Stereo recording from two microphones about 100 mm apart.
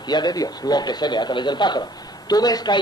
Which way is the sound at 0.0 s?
45° left (ahead or behind).